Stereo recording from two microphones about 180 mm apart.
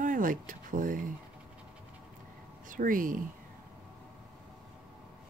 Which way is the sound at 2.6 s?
50° right (ahead or behind).